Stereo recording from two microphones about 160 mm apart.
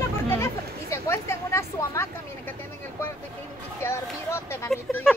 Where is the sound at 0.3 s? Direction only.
15° left (ahead or behind).